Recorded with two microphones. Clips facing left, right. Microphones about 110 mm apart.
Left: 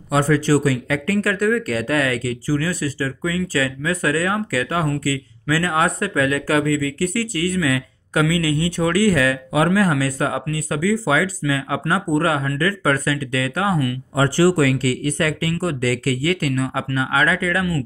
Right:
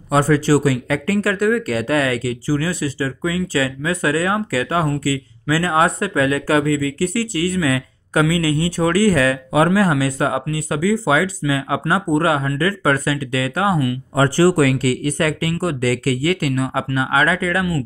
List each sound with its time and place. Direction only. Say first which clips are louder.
0.1 s speech: right 2 dB; 35° right (ahead or behind)
14.1 s speech: right 2 dB; 45° right (ahead or behind)